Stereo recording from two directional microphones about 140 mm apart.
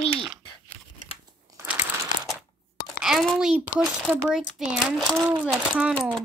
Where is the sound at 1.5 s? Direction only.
25° right (ahead or behind).